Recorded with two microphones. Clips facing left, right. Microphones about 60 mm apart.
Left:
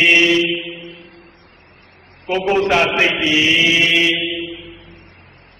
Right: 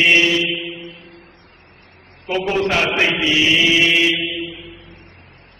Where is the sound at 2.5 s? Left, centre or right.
Centre.